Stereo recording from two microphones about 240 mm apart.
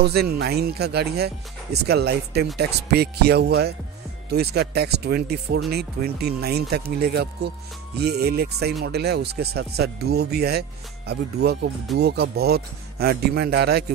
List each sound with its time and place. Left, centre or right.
0.0 s speech: right